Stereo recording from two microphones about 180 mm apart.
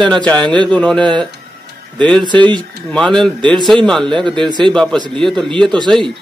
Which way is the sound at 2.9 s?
5° left (ahead or behind).